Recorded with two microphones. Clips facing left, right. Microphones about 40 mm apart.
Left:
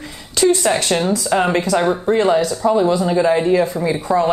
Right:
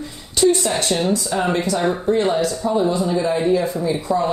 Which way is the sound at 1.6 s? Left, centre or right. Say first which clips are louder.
Left 4 dB; left.